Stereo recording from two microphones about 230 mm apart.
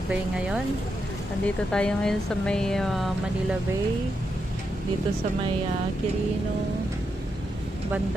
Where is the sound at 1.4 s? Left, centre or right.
Centre.